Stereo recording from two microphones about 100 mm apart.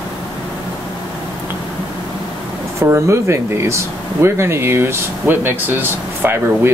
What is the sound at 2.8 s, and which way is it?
Speech, 25° right (ahead or behind).